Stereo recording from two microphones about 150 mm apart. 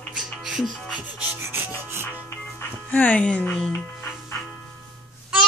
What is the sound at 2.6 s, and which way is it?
Music, 10° left (ahead or behind).